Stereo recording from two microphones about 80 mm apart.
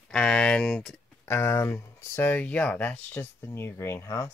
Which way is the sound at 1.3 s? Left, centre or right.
Left.